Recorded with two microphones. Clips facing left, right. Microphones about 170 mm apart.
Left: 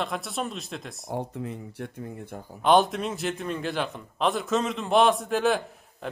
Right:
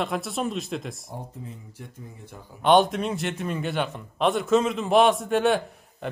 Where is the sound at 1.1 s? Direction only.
70° left (ahead or behind).